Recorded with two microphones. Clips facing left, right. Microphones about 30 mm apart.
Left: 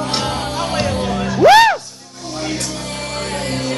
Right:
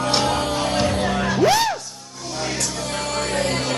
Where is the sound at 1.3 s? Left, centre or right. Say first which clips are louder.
Left 10 dB; left.